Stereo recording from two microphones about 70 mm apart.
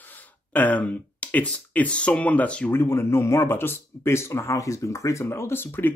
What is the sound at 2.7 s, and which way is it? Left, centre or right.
A man's voice, left.